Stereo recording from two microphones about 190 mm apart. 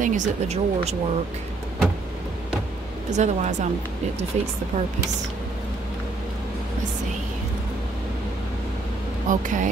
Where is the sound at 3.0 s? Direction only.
40° right (ahead or behind).